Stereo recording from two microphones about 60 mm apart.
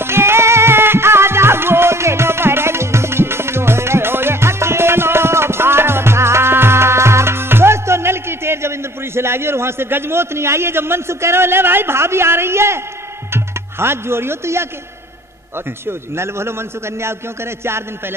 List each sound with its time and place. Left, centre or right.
0.0 s music: right
13.3 s speech: right
15.9 s a man's voice: right